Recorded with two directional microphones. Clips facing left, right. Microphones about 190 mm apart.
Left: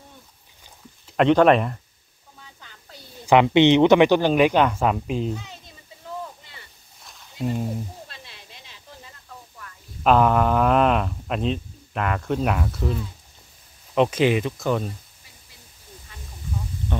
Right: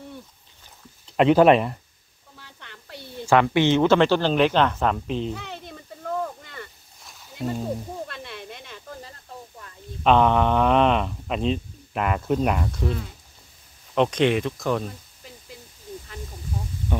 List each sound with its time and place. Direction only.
1.1 s speech: 5° right (ahead or behind)
2.3 s a sound: 70° right (ahead or behind)
3.3 s speech: 20° left (ahead or behind)
5.4 s a sound: 65° right (ahead or behind)
7.0 s a sound: centre (ahead or behind)
8.1 s snake: 55° right (ahead or behind)
10.0 s speech: 5° left (ahead or behind)
13.9 s speech: 5° left (ahead or behind)
16.9 s speech: 10° right (ahead or behind)